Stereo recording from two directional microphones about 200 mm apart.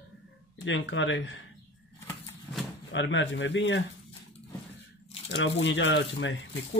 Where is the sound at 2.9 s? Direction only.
65° left (ahead or behind).